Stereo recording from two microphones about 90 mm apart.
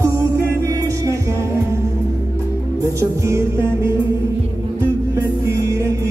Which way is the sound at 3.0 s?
35° right (ahead or behind).